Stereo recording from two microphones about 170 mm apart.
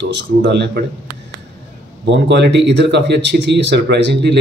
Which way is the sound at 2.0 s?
90° right.